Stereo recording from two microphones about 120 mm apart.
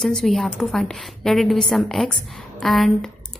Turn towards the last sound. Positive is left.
turn(degrees=0)  # may be behind; listen again after turning